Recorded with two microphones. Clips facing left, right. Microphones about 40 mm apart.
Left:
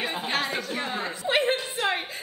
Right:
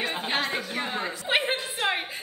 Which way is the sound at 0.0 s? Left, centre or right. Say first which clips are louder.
Even; centre.